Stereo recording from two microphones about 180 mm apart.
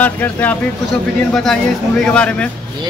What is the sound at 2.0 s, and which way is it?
Speech, 5° left (ahead or behind).